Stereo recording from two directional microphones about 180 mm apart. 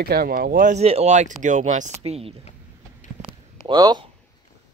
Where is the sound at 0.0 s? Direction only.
60° right (ahead or behind); by 2.4 s 35° right (ahead or behind).